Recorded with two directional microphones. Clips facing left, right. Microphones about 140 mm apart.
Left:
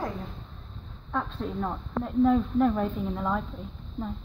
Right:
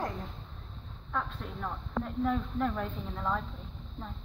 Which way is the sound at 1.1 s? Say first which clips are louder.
Left 5 dB; 25° left (ahead or behind).